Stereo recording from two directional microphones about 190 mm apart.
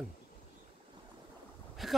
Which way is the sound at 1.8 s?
Centre (ahead or behind).